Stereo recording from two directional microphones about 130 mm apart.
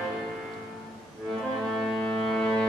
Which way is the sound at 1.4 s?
Centre (ahead or behind).